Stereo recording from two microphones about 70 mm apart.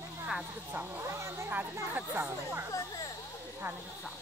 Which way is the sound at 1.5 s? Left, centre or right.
Right.